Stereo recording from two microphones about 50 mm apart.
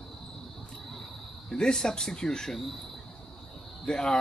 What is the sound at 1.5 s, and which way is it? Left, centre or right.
Speech, centre.